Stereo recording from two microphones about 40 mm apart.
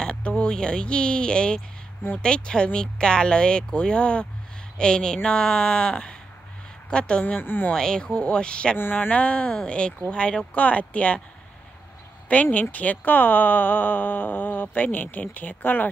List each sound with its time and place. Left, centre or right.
0.0 s speech: left
12.3 s speech: left